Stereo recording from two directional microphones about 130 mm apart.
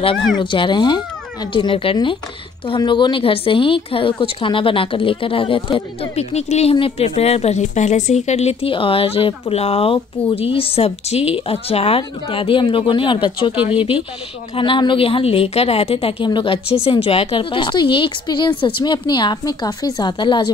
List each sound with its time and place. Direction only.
0.4 s a woman's voice: 40° left (ahead or behind)